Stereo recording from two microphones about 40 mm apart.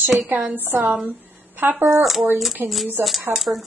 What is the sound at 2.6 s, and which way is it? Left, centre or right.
Speech, right.